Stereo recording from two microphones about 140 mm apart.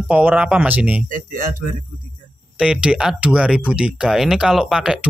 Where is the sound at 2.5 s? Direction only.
5° right (ahead or behind).